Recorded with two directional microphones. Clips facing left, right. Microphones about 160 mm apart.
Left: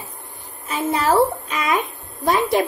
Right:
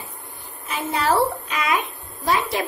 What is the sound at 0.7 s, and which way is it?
Speech, 40° left (ahead or behind).